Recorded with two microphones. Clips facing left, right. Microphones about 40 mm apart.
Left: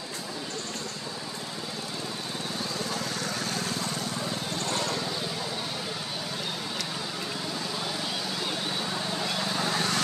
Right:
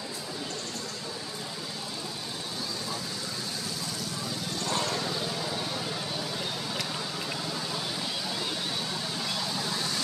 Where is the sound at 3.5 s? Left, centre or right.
Left.